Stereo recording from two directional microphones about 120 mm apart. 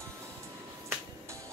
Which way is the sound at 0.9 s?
25° right (ahead or behind).